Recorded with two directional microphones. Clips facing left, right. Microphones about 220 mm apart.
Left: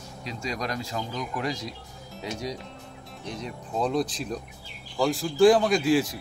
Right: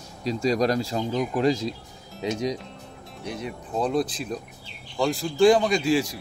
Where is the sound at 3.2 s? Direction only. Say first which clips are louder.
Right 3 dB; 5° right (ahead or behind).